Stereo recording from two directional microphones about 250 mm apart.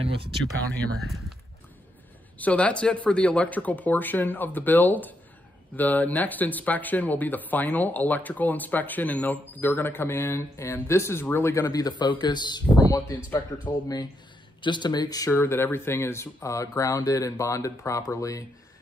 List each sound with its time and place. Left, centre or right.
0.0 s speech: right
2.3 s speech: centre
14.6 s speech: centre